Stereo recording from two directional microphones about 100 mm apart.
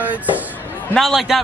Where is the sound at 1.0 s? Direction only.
Centre (ahead or behind).